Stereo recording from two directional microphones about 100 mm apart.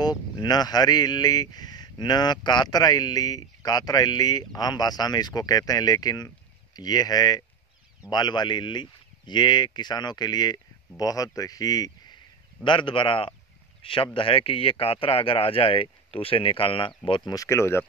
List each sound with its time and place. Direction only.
0.0 s speech: 45° left (ahead or behind)
12.6 s speech: 60° left (ahead or behind)
17.3 s speech: 30° left (ahead or behind)